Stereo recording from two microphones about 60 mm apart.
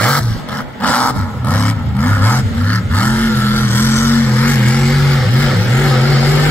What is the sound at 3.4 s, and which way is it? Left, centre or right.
Vehicle, left.